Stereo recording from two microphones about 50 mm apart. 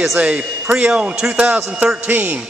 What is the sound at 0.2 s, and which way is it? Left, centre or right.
A man's voice, right.